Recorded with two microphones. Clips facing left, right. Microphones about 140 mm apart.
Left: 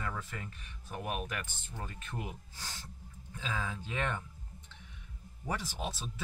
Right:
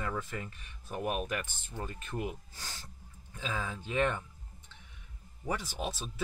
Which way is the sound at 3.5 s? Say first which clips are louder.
Right 3 dB; 15° right (ahead or behind).